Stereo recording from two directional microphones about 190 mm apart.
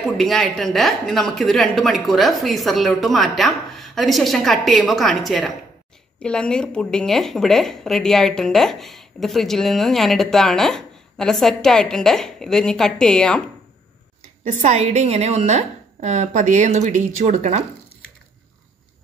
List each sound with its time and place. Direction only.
0.0 s a woman's voice: centre (ahead or behind)
14.4 s a woman's voice: 35° right (ahead or behind)